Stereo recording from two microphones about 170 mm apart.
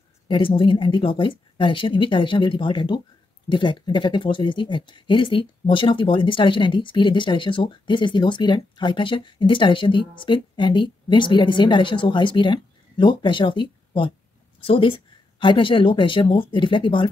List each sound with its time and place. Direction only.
0.3 s speech: 30° left (ahead or behind)